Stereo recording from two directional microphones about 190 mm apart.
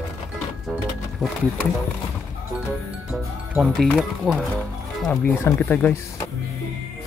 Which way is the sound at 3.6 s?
Centre (ahead or behind).